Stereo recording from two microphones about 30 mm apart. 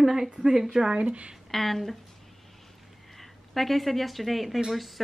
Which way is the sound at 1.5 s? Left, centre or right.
Centre.